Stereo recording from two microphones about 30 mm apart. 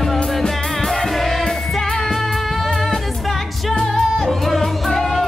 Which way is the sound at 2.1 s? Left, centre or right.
Centre.